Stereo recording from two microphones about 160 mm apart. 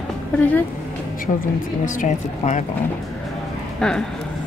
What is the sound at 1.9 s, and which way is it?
Speech, 50° left (ahead or behind).